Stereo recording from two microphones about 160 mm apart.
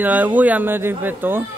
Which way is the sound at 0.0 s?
10° right (ahead or behind).